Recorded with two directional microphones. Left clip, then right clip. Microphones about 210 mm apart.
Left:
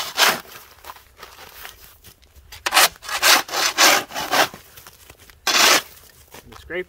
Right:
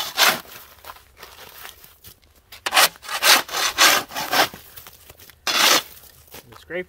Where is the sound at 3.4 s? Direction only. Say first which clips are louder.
Left 1 dB; 5° left (ahead or behind).